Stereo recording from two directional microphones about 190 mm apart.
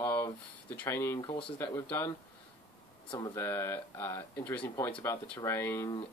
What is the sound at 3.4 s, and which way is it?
Speech, 10° left (ahead or behind).